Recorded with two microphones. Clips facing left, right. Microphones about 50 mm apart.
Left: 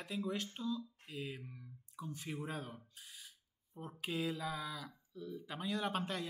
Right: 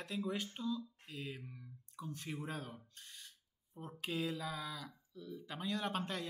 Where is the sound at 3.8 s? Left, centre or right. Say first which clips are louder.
Even; centre.